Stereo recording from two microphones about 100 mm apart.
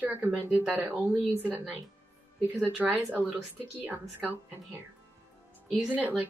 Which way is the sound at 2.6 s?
15° right (ahead or behind).